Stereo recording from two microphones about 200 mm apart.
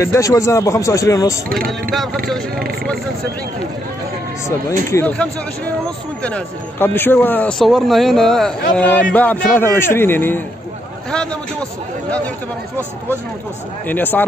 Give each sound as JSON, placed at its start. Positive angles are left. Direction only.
{"t": 0.0, "sound": "speech", "side_deg": 15}
{"t": 1.7, "sound": "a man's voice", "side_deg": 0}
{"t": 4.5, "sound": "a man's voice", "side_deg": 15}
{"t": 13.8, "sound": "speech", "side_deg": 10}